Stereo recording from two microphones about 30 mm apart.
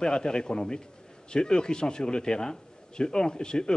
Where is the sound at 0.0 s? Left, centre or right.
Left.